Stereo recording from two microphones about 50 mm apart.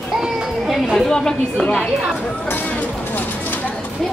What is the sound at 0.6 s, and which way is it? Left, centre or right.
A woman's voice, centre.